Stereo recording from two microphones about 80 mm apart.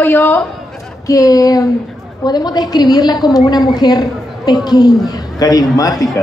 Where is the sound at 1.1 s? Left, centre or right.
Left.